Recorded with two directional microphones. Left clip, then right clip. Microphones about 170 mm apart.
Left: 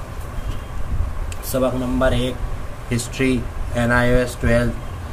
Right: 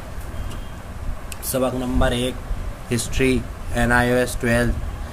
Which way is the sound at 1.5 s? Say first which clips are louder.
Left 2 dB; 30° right (ahead or behind).